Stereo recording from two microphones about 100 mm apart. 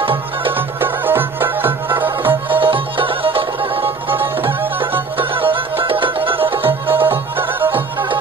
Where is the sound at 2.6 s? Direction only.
60° right (ahead or behind).